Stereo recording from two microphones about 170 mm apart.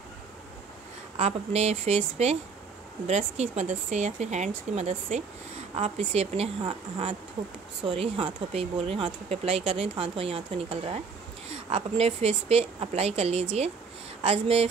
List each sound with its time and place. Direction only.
1.1 s speech: 40° right (ahead or behind)